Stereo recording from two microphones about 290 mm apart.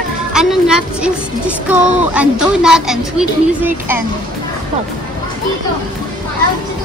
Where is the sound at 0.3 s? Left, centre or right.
Centre.